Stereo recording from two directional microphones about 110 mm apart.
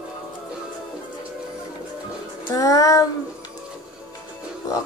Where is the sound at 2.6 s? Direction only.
30° left (ahead or behind).